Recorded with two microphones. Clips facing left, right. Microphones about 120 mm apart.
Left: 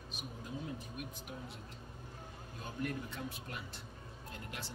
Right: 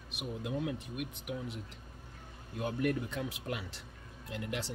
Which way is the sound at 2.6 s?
85° right.